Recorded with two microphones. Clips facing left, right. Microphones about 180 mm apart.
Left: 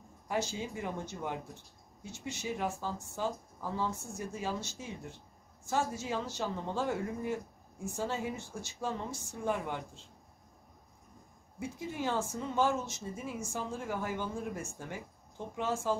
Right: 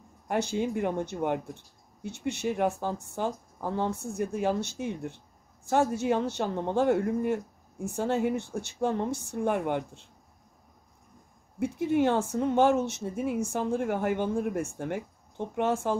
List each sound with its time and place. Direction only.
0.3 s speech: 60° right (ahead or behind)
11.6 s speech: 65° right (ahead or behind)